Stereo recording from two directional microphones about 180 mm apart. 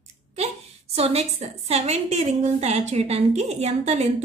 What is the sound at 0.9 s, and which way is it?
A woman's voice, 35° right (ahead or behind).